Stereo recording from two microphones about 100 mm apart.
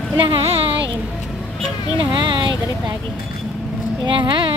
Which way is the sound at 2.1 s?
55° right (ahead or behind).